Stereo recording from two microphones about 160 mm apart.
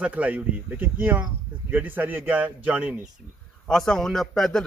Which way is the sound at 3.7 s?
5° left (ahead or behind).